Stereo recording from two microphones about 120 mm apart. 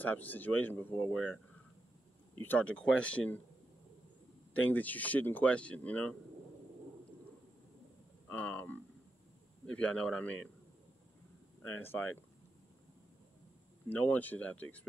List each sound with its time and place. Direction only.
0.0 s speech: 15° left (ahead or behind)
1.1 s speech: 5° left (ahead or behind)
2.4 s speech: 15° left (ahead or behind)
4.6 s speech: 15° left (ahead or behind)
8.3 s speech: 10° left (ahead or behind)
11.6 s speech: 15° left (ahead or behind)
13.8 s speech: 15° left (ahead or behind)